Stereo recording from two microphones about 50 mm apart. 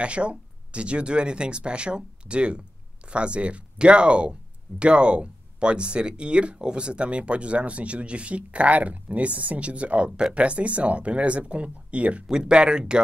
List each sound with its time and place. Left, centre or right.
0.0 s speech: right